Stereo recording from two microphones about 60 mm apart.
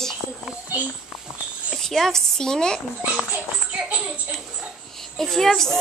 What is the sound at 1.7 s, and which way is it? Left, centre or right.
A woman's voice, centre.